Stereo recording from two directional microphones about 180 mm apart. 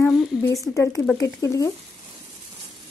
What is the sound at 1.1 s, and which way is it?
Speech, 20° left (ahead or behind).